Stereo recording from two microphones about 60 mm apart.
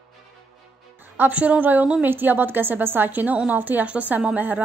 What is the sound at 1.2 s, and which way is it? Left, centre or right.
A woman's voice, right.